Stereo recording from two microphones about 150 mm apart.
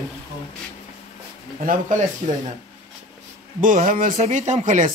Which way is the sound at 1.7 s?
55° right (ahead or behind).